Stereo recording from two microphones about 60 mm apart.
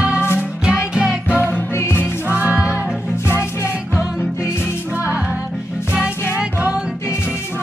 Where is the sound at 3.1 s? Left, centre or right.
Left.